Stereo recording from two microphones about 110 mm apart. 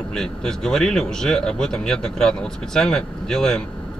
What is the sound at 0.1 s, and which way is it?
Speech, 5° left (ahead or behind).